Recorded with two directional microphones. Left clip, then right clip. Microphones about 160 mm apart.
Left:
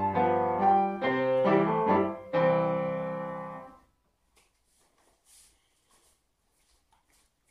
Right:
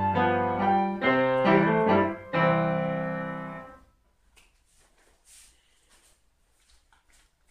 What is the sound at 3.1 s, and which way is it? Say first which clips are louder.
Keyboard: right 2 dB; 35° right (ahead or behind).